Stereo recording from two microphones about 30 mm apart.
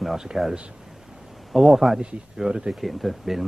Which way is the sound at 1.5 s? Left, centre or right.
Centre.